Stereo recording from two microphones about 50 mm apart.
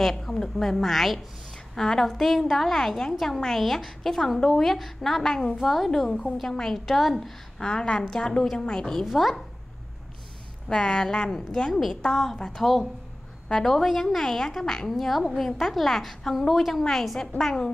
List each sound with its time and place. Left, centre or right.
0.0 s a woman's voice: centre
7.5 s a woman's voice: centre
9.0 s a woman's voice: centre
10.7 s a woman's voice: centre